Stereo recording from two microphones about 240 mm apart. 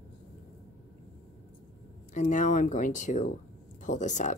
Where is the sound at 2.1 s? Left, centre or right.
Left.